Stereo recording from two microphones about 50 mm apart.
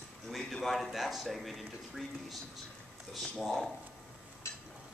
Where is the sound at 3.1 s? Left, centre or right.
Centre.